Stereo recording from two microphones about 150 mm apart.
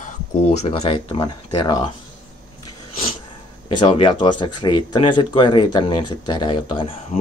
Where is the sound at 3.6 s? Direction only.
35° left (ahead or behind).